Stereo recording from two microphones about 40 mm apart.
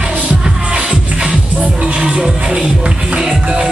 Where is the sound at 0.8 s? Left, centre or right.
Right.